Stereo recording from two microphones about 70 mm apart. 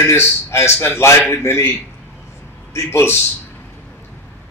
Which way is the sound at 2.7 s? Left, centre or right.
Left.